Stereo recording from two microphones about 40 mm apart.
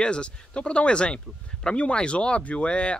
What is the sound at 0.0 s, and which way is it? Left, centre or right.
Speech, left.